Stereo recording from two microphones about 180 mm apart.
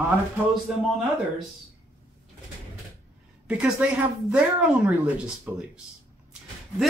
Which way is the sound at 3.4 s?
5° right (ahead or behind).